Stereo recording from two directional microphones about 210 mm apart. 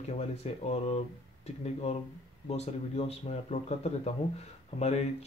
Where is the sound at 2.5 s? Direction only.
30° left (ahead or behind).